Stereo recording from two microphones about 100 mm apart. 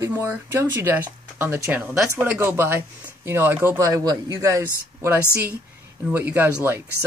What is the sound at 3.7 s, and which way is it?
Speech, 35° right (ahead or behind).